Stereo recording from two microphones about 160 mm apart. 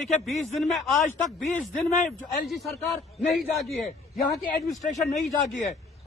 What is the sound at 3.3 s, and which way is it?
Speech, centre (ahead or behind).